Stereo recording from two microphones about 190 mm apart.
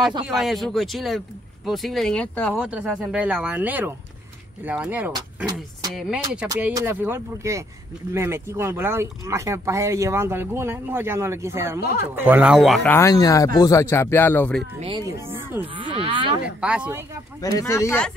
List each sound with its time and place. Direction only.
0.4 s speech: centre (ahead or behind)
2.6 s speech: 5° right (ahead or behind)
6.6 s speech: 15° right (ahead or behind); by 14.6 s 10° left (ahead or behind)
14.8 s speech: 25° right (ahead or behind)
15.6 s speech: 30° right (ahead or behind)
16.4 s speech: 5° right (ahead or behind)
17.4 s speech: 20° left (ahead or behind)